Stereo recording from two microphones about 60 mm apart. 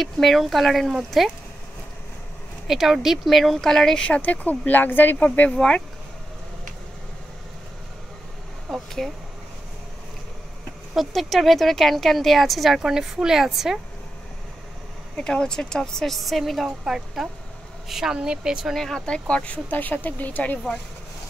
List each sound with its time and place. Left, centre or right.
0.0 s a woman's voice: centre
2.7 s a woman's voice: centre
4.0 s speech: left
8.6 s a sound: centre
11.0 s a woman's voice: centre
15.1 s a woman's voice: centre
18.7 s speech: centre; by 20.5 s left